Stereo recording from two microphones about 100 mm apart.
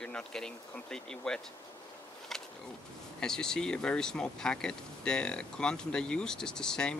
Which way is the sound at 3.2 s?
5° left (ahead or behind).